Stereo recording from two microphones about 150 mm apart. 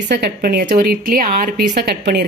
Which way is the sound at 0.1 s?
90° right.